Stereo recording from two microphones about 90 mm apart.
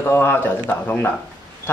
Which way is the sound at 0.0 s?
25° left (ahead or behind).